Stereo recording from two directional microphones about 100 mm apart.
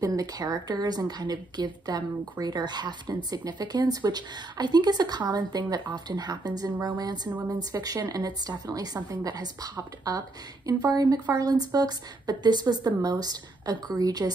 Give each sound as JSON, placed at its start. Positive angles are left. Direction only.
{"t": 0.0, "sound": "a woman's voice", "side_deg": -35}